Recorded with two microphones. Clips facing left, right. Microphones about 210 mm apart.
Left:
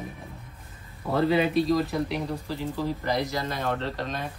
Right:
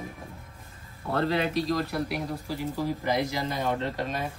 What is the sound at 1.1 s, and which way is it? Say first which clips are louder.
Speech: left 4 dB; 5° left (ahead or behind).